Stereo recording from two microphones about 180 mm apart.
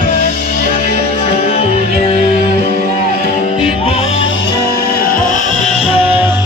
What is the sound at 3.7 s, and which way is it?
Music, 30° left (ahead or behind).